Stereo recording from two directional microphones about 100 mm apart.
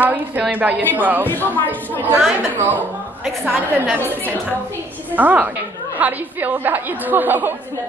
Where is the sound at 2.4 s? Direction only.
20° right (ahead or behind).